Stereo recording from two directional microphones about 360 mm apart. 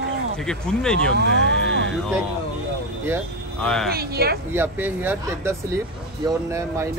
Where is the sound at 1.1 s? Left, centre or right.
Right.